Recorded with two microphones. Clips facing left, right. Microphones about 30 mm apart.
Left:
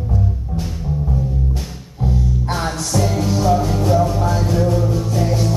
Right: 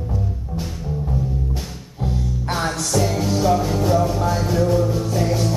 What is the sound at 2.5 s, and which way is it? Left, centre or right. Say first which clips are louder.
Music: right 2 dB; centre.